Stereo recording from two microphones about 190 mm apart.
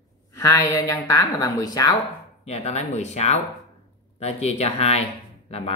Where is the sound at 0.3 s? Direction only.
20° left (ahead or behind).